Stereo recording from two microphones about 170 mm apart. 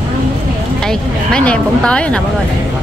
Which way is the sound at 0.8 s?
5° left (ahead or behind).